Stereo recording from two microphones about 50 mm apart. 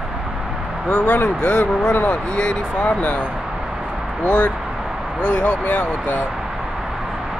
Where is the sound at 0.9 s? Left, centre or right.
Left.